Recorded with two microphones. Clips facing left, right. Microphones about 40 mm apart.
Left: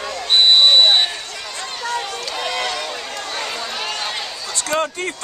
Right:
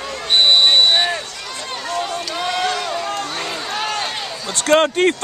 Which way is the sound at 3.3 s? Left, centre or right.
Centre.